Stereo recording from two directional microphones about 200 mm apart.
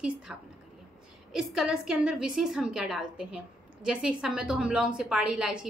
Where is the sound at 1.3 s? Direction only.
Centre (ahead or behind).